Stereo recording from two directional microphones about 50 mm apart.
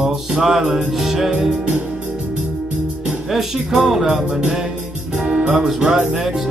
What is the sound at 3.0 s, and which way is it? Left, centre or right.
Music, centre.